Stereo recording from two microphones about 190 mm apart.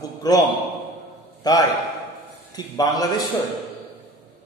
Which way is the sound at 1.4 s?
20° left (ahead or behind).